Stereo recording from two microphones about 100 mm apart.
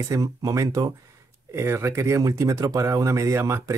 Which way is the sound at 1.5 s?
25° right (ahead or behind).